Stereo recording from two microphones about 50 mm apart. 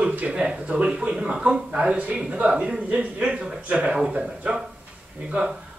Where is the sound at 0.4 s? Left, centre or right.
Right.